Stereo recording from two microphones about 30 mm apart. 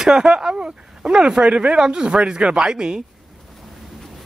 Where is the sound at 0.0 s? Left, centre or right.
Right.